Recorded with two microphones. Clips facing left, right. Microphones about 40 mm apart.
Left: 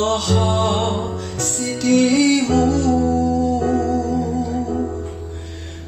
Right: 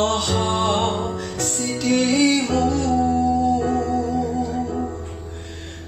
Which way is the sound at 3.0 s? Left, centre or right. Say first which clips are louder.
Left 1 dB; right.